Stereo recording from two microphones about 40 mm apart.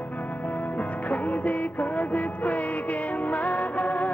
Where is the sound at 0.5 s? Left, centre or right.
Left.